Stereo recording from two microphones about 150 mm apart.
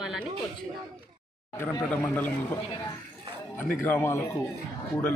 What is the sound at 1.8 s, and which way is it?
Speech, 10° left (ahead or behind).